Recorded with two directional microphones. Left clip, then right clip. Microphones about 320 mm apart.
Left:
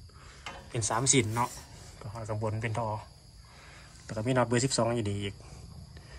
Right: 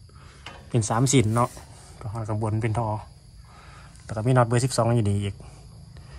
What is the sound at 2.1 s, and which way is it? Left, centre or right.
Speech, centre.